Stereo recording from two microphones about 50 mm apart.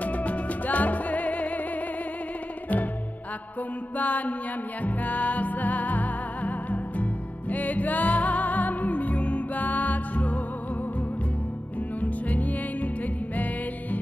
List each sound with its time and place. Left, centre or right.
0.0 s music: left
3.9 s mantra: left
4.8 s music: left
12.0 s music: left